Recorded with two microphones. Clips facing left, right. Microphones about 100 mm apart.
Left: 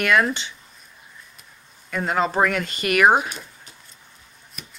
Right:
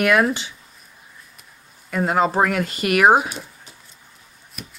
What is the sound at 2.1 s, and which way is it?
Speech, 40° right (ahead or behind).